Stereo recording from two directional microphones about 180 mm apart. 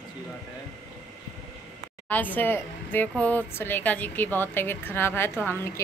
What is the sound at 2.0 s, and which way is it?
A woman's voice, 10° left (ahead or behind).